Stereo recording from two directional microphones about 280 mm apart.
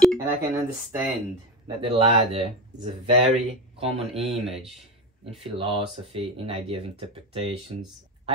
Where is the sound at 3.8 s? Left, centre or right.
Right.